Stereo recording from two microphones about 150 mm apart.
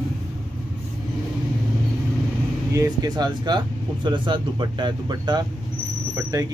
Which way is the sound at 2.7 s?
25° right (ahead or behind).